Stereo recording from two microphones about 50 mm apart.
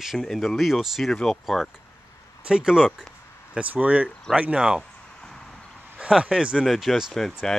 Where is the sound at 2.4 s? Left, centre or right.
Centre.